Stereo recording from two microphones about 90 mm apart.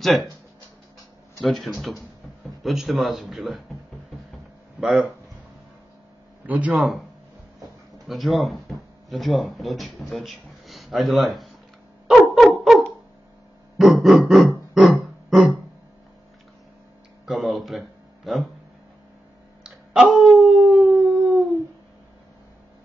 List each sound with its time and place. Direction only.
0.0 s speech: centre (ahead or behind)
1.4 s a man's voice: centre (ahead or behind)
4.7 s speech: 5° right (ahead or behind)
6.4 s speech: 15° right (ahead or behind)
6.7 s a man's voice: centre (ahead or behind)
8.1 s speech: centre (ahead or behind)
12.1 s a sound: centre (ahead or behind)
13.7 s grunt: centre (ahead or behind)
14.7 s a sound: centre (ahead or behind)
17.3 s music: centre (ahead or behind)
19.6 s howl: 5° right (ahead or behind)